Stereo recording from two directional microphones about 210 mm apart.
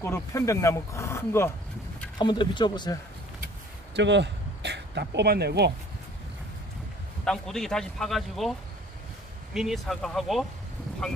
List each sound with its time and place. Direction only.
0.0 s speech: 15° left (ahead or behind)
3.9 s speech: 55° right (ahead or behind)
7.2 s speech: centre (ahead or behind)